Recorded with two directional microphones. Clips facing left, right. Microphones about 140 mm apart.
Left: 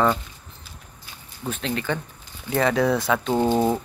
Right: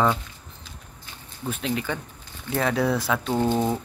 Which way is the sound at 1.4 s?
10° right (ahead or behind).